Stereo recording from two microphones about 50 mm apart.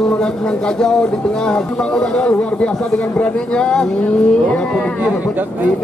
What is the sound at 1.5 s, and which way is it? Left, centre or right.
Speech, centre.